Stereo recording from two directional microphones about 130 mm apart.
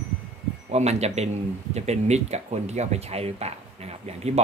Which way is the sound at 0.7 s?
55° right (ahead or behind).